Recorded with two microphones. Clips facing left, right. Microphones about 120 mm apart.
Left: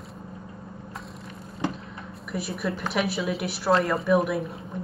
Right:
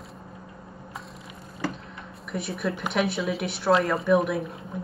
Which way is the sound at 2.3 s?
Centre (ahead or behind).